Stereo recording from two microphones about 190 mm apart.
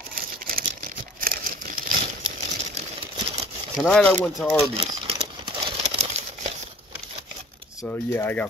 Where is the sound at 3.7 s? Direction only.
Centre (ahead or behind).